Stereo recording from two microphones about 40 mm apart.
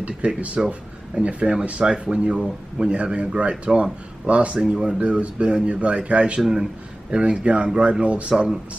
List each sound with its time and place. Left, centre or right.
0.2 s speech: right
2.3 s speech: centre
2.9 s speech: right